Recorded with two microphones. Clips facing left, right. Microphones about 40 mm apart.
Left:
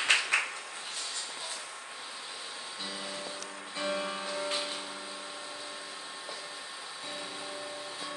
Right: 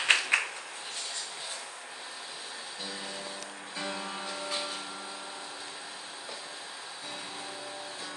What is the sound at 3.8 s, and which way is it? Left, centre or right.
Music, centre.